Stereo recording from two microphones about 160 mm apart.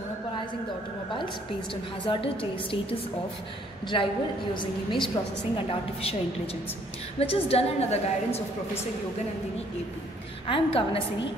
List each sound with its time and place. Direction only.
2.0 s a woman's voice: 35° left (ahead or behind)
10.4 s a woman's voice: 35° left (ahead or behind)